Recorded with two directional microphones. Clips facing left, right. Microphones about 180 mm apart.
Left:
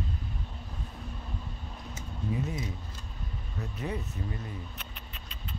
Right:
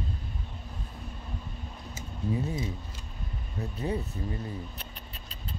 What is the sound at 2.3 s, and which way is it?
Speech, 30° right (ahead or behind).